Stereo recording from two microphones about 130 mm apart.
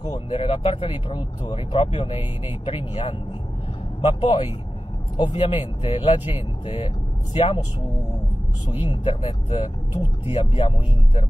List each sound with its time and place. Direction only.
0.0 s speech: 35° left (ahead or behind)
8.8 s speech: 40° left (ahead or behind)